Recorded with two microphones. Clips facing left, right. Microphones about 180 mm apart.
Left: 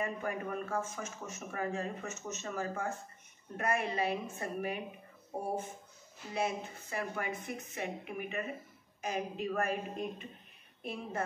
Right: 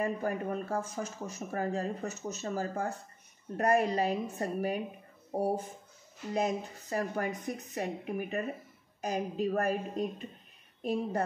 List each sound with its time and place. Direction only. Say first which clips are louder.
0.0 s speech: right 4 dB; 35° right (ahead or behind)
6.3 s speech: right 4 dB; 40° right (ahead or behind)